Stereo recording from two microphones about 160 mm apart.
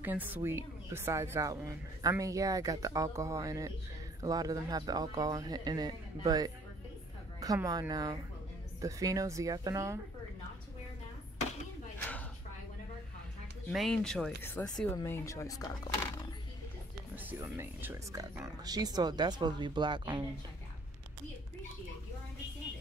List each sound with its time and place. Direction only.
0.0 s speech: 10° right (ahead or behind)
13.7 s speech: centre (ahead or behind); by 15.7 s 20° left (ahead or behind)
17.1 s speech: 10° right (ahead or behind); by 20.2 s 30° right (ahead or behind)